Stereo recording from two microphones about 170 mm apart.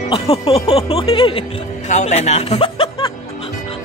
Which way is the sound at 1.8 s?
45° left (ahead or behind).